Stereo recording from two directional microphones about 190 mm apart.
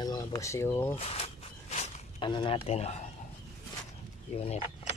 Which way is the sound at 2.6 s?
35° left (ahead or behind).